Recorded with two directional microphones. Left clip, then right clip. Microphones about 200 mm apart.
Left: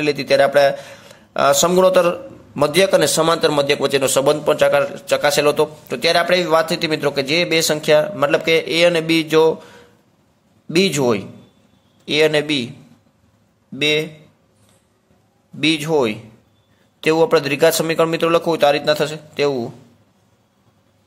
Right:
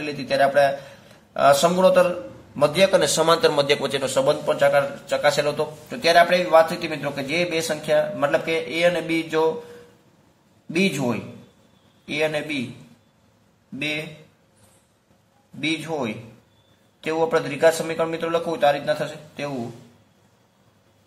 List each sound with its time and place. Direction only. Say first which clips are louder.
0.0 s a man's voice: left 6 dB; 40° left (ahead or behind)
10.7 s a man's voice: left 7 dB; 45° left (ahead or behind)
15.6 s a man's voice: left 9 dB; 40° left (ahead or behind)